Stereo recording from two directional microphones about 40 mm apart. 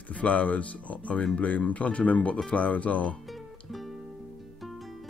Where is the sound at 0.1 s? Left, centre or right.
Left.